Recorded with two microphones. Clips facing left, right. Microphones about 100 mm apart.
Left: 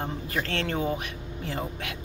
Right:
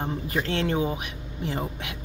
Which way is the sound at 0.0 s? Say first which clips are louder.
Right 3 dB; 15° right (ahead or behind).